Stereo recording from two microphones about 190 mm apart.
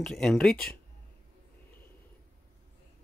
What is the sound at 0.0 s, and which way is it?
Speech, 5° left (ahead or behind).